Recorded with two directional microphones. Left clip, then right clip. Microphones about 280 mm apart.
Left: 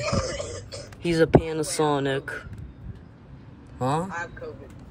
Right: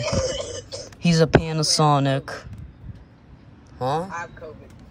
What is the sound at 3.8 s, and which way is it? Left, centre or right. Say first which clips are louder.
Speech: right 2 dB; centre.